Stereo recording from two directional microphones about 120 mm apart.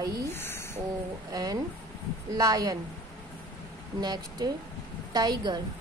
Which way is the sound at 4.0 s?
35° right (ahead or behind).